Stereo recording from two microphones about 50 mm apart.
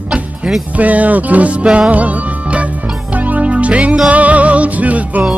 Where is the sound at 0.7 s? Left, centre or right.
Right.